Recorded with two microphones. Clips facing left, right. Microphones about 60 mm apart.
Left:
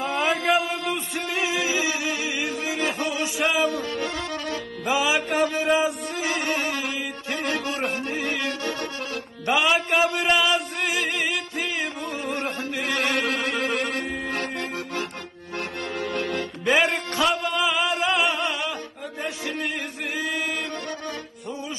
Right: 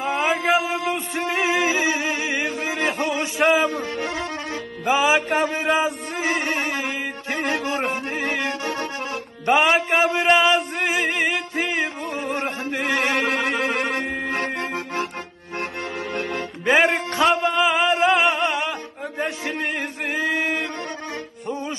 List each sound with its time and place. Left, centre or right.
0.0 s a sound: centre
0.9 s music: right
3.7 s music: right
8.5 s accordion: right
9.6 s male singing: right
12.4 s a sound: right
13.0 s music: right
14.4 s music: right
16.0 s accordion: centre
16.3 s music: right
19.2 s speech: right
20.2 s male singing: right